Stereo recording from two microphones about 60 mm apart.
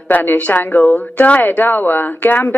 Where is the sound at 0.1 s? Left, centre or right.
Left.